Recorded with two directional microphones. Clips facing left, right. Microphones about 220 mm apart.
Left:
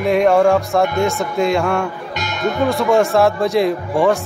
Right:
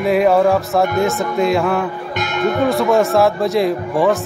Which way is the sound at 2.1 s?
55° right (ahead or behind).